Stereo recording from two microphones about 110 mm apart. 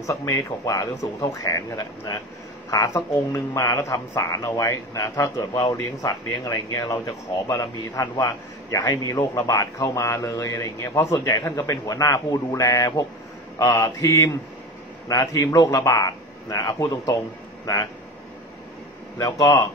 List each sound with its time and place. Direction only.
0.0 s a man's voice: 30° left (ahead or behind)
19.4 s speech: 40° left (ahead or behind)